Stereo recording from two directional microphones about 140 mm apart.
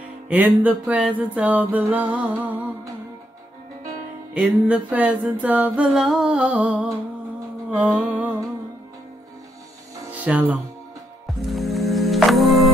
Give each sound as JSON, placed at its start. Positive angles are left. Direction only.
{"t": 0.3, "sound": "music", "side_deg": -10}
{"t": 4.3, "sound": "music", "side_deg": -10}
{"t": 7.7, "sound": "a sound", "side_deg": -10}
{"t": 10.1, "sound": "music", "side_deg": -10}
{"t": 11.4, "sound": "music", "side_deg": 0}